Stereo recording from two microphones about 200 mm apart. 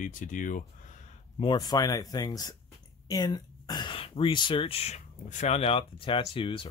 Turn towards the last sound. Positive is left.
turn(degrees=25)  # may be behind; listen again after turning